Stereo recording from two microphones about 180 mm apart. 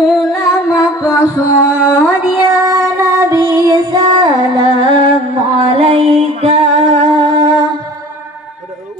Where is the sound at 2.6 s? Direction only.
15° right (ahead or behind).